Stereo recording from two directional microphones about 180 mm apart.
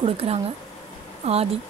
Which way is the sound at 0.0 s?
35° right (ahead or behind).